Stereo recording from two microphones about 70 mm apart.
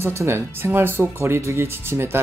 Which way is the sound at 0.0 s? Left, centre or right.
Right.